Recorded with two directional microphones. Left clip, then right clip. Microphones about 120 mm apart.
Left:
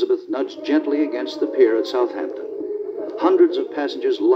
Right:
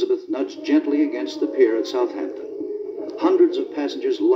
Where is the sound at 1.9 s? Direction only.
20° left (ahead or behind).